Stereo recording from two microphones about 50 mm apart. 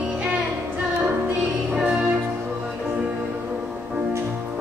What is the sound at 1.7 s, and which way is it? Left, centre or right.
Music, right.